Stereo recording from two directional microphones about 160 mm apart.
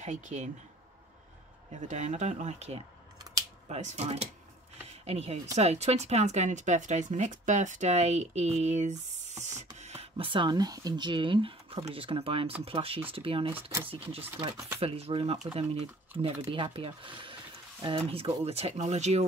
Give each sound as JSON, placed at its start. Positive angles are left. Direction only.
{"t": 0.0, "sound": "speech", "side_deg": -50}
{"t": 1.9, "sound": "speech", "side_deg": -45}
{"t": 13.6, "sound": "speech", "side_deg": -20}
{"t": 13.8, "sound": "speech", "side_deg": -35}